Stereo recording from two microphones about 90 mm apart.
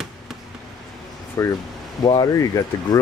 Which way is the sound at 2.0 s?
55° left (ahead or behind).